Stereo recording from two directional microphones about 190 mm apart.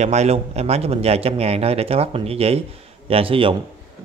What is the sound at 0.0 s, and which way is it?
A man's voice, 35° right (ahead or behind).